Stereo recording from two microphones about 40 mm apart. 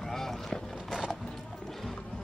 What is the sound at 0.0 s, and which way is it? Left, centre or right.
Vehicle, centre.